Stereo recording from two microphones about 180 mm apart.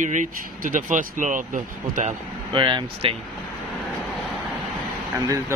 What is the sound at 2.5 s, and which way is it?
Speech, 25° right (ahead or behind).